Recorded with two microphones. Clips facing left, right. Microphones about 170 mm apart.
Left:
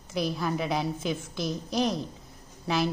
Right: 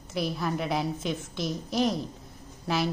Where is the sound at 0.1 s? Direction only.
Centre (ahead or behind).